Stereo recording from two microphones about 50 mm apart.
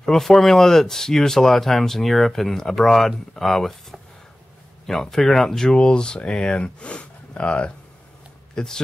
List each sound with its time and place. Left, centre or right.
0.0 s speech: centre